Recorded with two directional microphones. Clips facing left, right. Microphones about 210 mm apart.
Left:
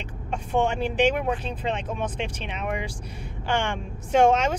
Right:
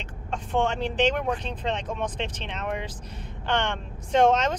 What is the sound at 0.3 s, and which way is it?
Speech, 10° left (ahead or behind).